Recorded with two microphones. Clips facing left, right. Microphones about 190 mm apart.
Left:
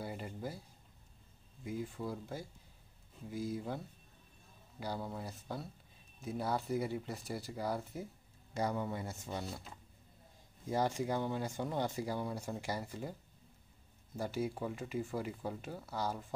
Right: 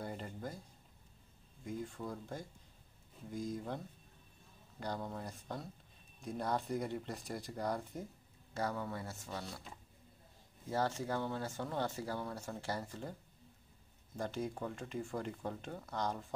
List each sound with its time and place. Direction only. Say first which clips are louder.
0.0 s a sound: left 1 dB; 5° left (ahead or behind)
1.6 s speech: left 2 dB; 5° left (ahead or behind)
8.5 s speech: left 3 dB; 20° left (ahead or behind)
10.7 s speech: left 2 dB; 15° left (ahead or behind)
14.1 s speech: left 2 dB; 5° left (ahead or behind)